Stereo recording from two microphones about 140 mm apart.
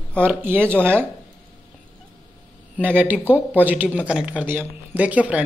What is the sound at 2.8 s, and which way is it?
Speech, 10° right (ahead or behind).